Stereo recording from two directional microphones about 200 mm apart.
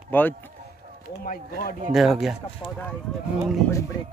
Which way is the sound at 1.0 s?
45° left (ahead or behind).